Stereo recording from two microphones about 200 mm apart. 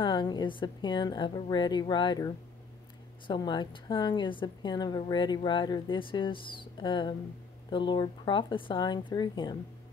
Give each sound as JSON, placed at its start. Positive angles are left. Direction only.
{"t": 0.0, "sound": "a woman's voice", "side_deg": 20}